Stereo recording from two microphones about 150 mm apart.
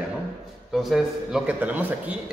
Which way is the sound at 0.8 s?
Centre (ahead or behind).